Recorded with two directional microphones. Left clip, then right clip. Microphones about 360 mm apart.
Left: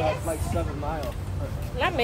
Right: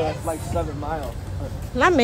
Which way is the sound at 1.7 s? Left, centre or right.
Right.